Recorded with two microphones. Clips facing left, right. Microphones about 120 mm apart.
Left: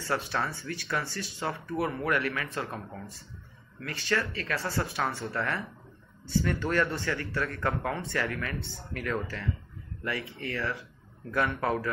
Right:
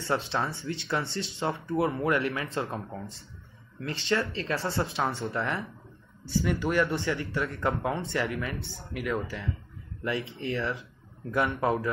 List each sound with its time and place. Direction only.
0.0 s speech: 25° right (ahead or behind)
6.9 s speech: 25° right (ahead or behind)